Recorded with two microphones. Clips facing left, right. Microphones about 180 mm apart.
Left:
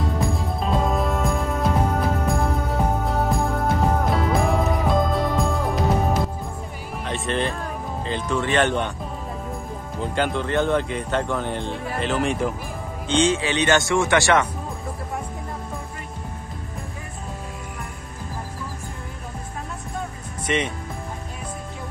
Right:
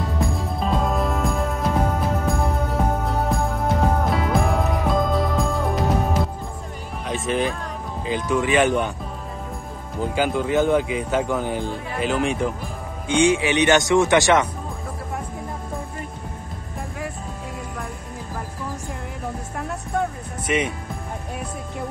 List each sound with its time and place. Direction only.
0.0 s music: centre (ahead or behind)
7.1 s music: 5° right (ahead or behind)
8.0 s speech: 5° right (ahead or behind)
10.1 s speech: 5° right (ahead or behind)
13.1 s speech: 15° right (ahead or behind)
19.9 s music: 65° right (ahead or behind)
20.4 s speech: 10° right (ahead or behind)